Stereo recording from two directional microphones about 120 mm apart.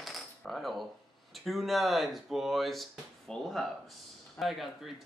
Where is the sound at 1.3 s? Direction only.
Centre (ahead or behind).